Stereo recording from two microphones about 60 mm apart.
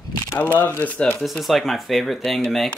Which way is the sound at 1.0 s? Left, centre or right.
Centre.